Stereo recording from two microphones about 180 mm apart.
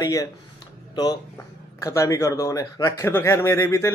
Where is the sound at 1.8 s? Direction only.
15° left (ahead or behind).